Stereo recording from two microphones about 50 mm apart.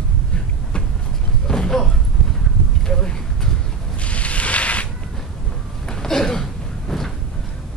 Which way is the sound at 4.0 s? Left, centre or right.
Left.